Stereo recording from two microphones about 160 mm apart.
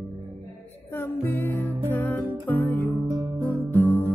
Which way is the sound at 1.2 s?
15° left (ahead or behind).